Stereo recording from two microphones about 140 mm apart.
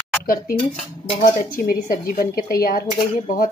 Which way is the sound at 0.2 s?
90° left.